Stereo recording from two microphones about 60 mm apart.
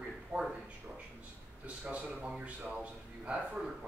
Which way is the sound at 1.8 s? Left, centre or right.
Centre.